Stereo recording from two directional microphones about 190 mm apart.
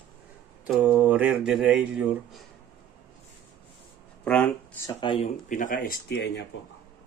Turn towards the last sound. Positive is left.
turn(degrees=60)  # may be behind; listen again after turning